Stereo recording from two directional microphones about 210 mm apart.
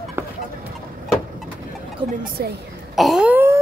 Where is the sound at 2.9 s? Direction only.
Centre (ahead or behind).